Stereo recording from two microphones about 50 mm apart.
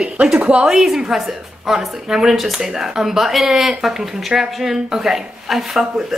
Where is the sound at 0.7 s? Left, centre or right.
Centre.